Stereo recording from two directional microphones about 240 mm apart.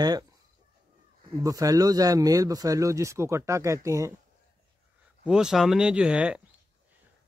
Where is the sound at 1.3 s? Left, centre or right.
Centre.